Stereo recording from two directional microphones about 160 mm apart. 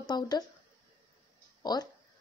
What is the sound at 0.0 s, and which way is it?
Speech, 25° left (ahead or behind).